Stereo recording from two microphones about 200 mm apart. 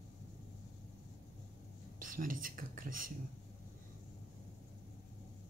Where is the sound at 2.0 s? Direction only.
45° right (ahead or behind).